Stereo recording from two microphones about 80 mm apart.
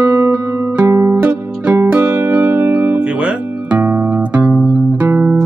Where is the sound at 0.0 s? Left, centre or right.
Right.